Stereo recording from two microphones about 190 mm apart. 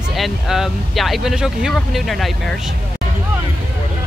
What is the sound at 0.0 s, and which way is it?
Speech, centre (ahead or behind).